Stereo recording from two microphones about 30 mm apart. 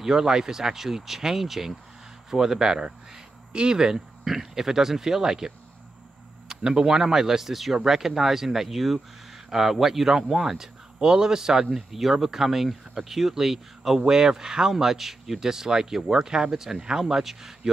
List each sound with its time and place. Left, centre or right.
0.0 s speech: centre
6.5 s speech: right
7.0 s speech: centre
15.4 s speech: centre
17.0 s speech: centre